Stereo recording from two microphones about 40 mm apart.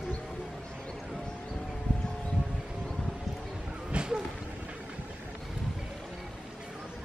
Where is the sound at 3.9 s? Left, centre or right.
Right.